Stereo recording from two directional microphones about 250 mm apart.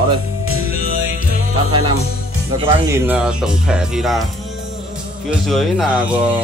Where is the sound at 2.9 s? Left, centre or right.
Centre.